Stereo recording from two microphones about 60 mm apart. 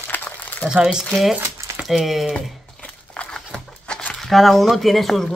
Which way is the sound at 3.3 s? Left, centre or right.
Centre.